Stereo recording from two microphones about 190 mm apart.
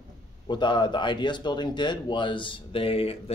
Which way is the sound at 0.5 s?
25° left (ahead or behind).